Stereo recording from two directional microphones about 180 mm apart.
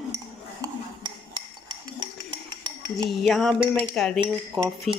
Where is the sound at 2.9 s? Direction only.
Centre (ahead or behind).